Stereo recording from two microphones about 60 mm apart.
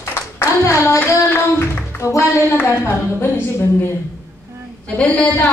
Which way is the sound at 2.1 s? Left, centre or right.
Left.